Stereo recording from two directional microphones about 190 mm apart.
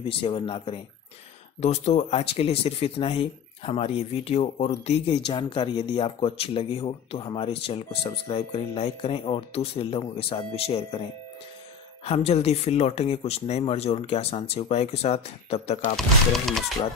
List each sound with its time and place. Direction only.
0.1 s speech: 30° left (ahead or behind)
5.2 s speech: 25° left (ahead or behind)
16.4 s speech: centre (ahead or behind)